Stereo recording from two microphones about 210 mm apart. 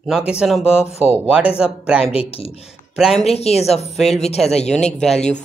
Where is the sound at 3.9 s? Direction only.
Centre (ahead or behind).